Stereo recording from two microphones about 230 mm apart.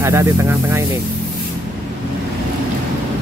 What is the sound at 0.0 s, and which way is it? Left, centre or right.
Speech, centre.